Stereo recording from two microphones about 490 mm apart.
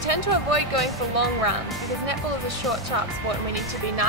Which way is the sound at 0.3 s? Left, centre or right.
Right.